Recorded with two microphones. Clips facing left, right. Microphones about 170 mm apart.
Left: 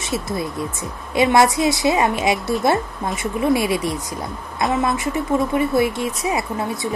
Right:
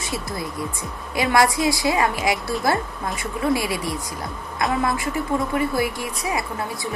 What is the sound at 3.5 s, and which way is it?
Speech, 20° left (ahead or behind).